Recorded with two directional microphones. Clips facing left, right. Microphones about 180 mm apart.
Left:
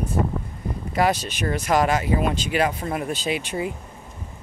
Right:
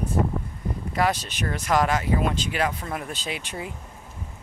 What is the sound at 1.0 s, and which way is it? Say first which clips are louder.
Speech: left 3 dB; 10° left (ahead or behind).